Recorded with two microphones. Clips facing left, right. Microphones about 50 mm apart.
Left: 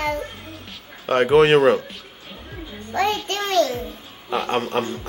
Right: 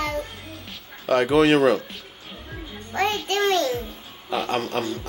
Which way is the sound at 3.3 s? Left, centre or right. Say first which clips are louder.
Even; right.